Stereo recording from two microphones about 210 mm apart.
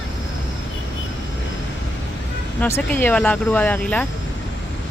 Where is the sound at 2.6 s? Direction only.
10° left (ahead or behind).